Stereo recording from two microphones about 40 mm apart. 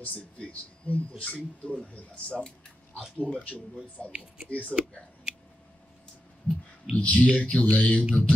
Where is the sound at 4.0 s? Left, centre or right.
Centre.